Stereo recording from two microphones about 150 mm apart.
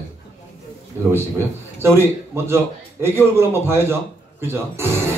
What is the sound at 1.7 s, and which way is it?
A man's voice, 15° right (ahead or behind).